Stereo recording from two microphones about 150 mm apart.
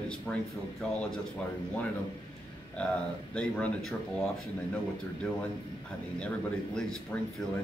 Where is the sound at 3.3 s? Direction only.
5° left (ahead or behind).